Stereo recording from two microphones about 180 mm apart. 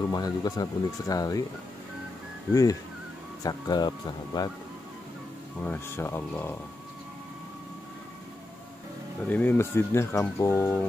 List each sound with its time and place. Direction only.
0.1 s speech: 20° left (ahead or behind)
2.5 s speech: 20° left (ahead or behind)
5.6 s speech: 10° left (ahead or behind)
9.3 s speech: 10° left (ahead or behind)